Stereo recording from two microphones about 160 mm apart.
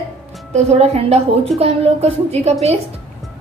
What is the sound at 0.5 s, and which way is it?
Speech, 45° right (ahead or behind).